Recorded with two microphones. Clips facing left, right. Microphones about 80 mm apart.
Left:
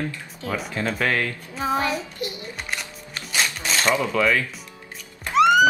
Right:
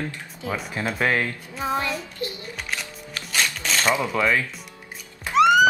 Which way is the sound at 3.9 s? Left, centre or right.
Centre.